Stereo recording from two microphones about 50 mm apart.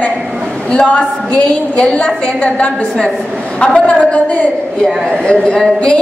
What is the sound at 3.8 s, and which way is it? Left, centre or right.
A woman's voice, centre.